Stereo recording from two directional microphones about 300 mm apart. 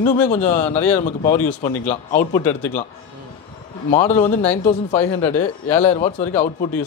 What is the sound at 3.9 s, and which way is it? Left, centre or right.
Speech, left.